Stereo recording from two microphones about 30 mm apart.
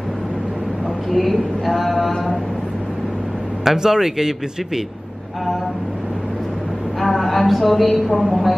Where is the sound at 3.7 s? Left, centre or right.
Centre.